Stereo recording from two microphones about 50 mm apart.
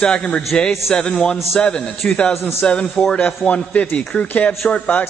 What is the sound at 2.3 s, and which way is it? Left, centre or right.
Speech, left.